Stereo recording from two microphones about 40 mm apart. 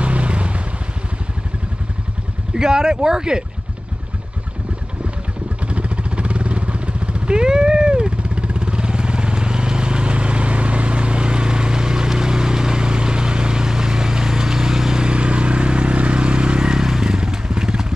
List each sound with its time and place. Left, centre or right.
0.0 s vehicle: right
2.5 s speech: centre
5.7 s vehicle: right